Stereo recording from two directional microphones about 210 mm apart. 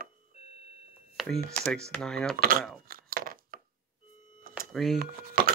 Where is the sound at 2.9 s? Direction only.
45° right (ahead or behind).